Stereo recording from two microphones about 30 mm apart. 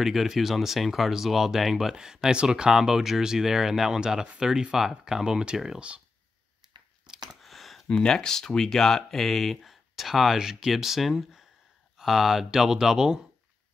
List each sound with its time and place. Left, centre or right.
0.0 s speech: centre
7.4 s a sound: centre
7.9 s speech: left; by 9.8 s centre
9.9 s speech: centre
10.7 s speech: centre
12.0 s speech: centre